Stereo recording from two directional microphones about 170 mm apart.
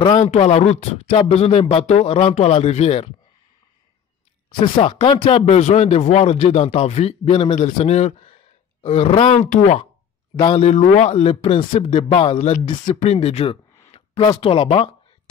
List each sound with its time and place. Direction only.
0.0 s speech: 40° left (ahead or behind)
4.6 s speech: 30° left (ahead or behind)
7.5 s speech: 45° left (ahead or behind); by 12.4 s 30° left (ahead or behind)
12.4 s speech: 45° left (ahead or behind)